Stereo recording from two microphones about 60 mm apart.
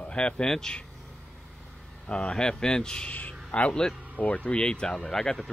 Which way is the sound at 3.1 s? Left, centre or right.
Left.